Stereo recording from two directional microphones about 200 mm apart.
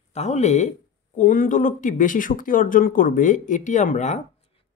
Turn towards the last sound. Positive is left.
turn(degrees=35)  # may be behind; listen again after turning